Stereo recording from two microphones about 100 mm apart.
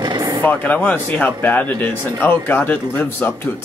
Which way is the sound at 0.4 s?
20° left (ahead or behind).